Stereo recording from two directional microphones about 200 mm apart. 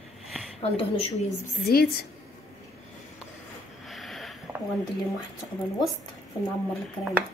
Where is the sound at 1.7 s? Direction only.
50° left (ahead or behind).